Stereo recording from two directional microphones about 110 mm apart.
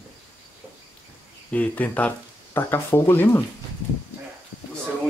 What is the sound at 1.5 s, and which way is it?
Speech, 15° left (ahead or behind).